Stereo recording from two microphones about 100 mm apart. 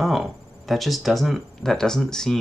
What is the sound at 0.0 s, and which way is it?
Speech, centre (ahead or behind).